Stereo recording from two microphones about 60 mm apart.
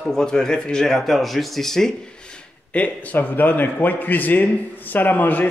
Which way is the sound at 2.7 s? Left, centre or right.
Left.